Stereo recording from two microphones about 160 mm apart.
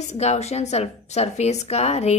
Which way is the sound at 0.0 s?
45° left (ahead or behind).